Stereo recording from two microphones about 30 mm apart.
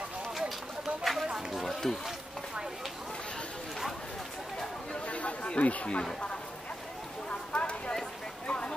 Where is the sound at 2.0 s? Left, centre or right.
Centre.